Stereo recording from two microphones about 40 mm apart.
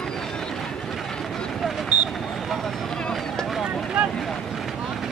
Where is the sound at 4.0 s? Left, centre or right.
Right.